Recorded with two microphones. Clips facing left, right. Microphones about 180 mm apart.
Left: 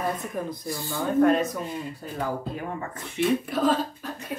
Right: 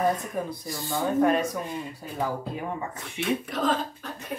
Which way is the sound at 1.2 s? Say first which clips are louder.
Left 3 dB; 10° right (ahead or behind).